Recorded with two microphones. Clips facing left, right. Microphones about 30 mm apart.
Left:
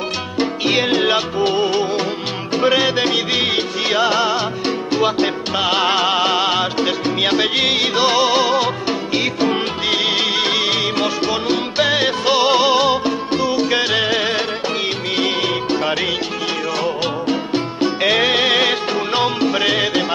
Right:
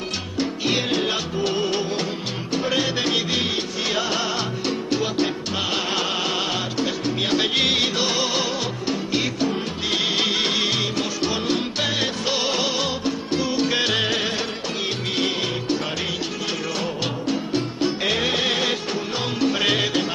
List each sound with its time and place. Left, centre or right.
0.4 s music: left
1.5 s music: centre
2.7 s music: left
5.2 s salsa music: left
5.9 s music: left
7.3 s music: centre
7.9 s music: left
9.8 s music: left
10.2 s music: centre; by 13.4 s left
13.6 s music: centre
17.3 s music: left
18.1 s music: left
19.2 s music: left
19.6 s music: centre